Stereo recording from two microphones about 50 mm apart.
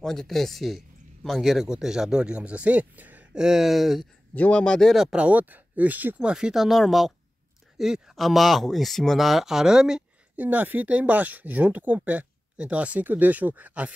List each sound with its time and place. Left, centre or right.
0.0 s speech: centre; by 3.3 s right
3.3 s speech: centre
4.4 s speech: centre
5.1 s speech: right
6.2 s speech: centre
6.5 s speech: centre
10.3 s speech: right
13.0 s speech: right